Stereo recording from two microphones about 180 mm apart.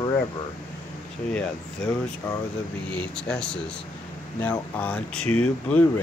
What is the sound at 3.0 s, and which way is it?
Speech, 5° left (ahead or behind).